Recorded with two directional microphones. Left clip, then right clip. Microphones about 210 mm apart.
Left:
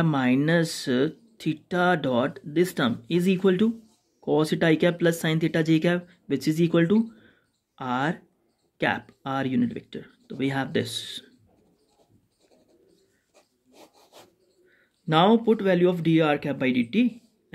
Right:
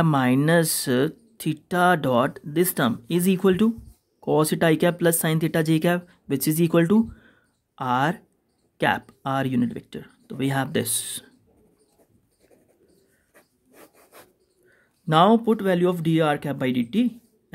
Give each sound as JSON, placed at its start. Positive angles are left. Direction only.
{"t": 0.0, "sound": "speech", "side_deg": -45}
{"t": 13.3, "sound": "rub", "side_deg": -10}
{"t": 14.7, "sound": "speech", "side_deg": -45}